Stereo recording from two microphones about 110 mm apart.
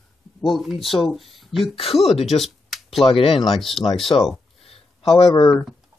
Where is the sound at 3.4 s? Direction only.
Centre (ahead or behind).